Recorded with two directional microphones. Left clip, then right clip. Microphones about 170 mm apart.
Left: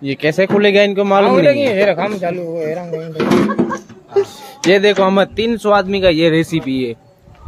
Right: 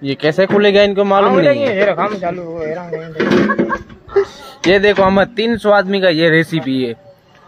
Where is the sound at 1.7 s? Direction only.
80° left.